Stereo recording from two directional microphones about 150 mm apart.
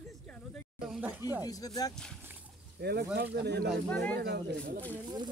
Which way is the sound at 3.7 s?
5° left (ahead or behind).